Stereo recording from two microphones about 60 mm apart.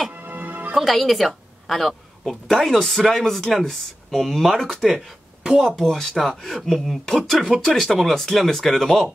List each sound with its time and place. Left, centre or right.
0.1 s music: right
0.7 s a woman's voice: centre
4.9 s speech: centre
5.8 s a woman's voice: centre